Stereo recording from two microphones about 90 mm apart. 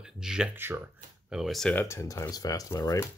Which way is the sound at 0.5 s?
25° right (ahead or behind).